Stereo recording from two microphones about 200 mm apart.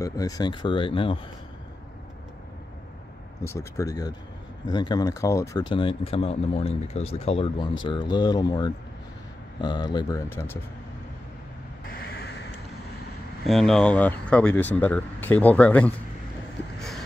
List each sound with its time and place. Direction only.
0.0 s speech: 15° left (ahead or behind)
3.4 s speech: 15° left (ahead or behind)
5.8 s speech: 25° left (ahead or behind); by 10.6 s 10° left (ahead or behind)
11.9 s a sound: 55° left (ahead or behind)
13.5 s speech: centre (ahead or behind)